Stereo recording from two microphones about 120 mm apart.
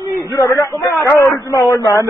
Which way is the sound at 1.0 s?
20° left (ahead or behind).